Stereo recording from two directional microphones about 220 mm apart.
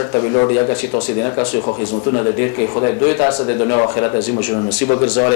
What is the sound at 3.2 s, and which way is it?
Speech, 25° left (ahead or behind).